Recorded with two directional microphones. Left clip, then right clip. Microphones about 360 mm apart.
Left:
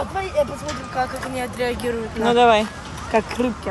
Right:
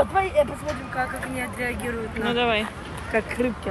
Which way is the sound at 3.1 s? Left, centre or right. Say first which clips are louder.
Left 4 dB; left.